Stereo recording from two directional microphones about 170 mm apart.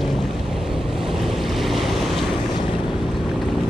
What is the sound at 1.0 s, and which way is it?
Waves, centre (ahead or behind).